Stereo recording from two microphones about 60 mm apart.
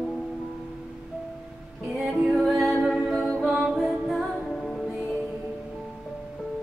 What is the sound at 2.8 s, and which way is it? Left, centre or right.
A capella, centre.